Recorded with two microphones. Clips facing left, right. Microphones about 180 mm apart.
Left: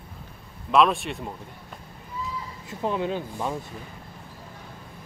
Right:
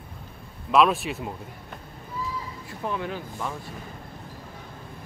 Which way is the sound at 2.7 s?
20° left (ahead or behind).